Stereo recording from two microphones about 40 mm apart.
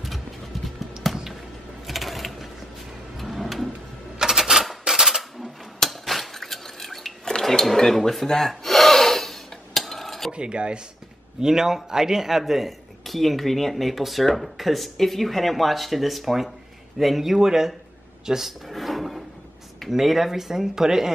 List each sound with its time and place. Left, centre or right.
1.0 s a sound: centre
1.9 s sewing machine: centre
3.2 s a sound: centre
4.2 s coin: centre
4.8 s a sound: centre
5.8 s dishes: centre
7.2 s speech: centre
8.3 s gasp: centre
10.3 s dishes: right
11.4 s speech: centre
18.7 s drawer open or close: centre
19.9 s speech: centre